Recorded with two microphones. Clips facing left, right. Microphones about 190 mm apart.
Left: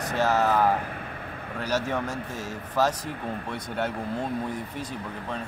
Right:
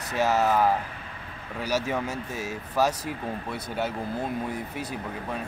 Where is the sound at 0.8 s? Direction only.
55° left (ahead or behind).